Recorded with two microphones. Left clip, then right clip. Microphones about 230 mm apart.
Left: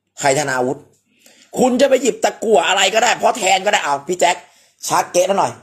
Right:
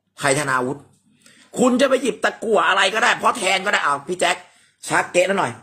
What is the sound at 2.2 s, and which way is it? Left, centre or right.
Speech, left.